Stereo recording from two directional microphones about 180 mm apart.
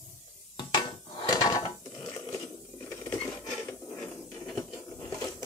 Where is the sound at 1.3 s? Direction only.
20° left (ahead or behind).